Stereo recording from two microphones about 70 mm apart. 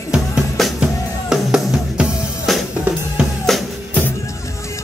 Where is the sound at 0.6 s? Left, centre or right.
Centre.